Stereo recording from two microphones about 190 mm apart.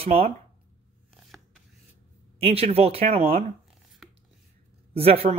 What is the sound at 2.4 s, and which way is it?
Speech, 30° right (ahead or behind).